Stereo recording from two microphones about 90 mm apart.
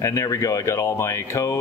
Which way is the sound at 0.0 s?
35° left (ahead or behind).